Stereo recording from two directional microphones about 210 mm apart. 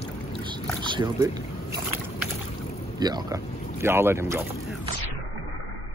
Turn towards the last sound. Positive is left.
turn(degrees=-10)  # may be behind; listen again after turning